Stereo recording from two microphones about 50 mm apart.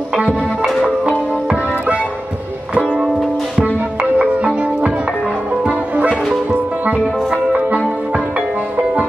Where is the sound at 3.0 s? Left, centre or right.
Centre.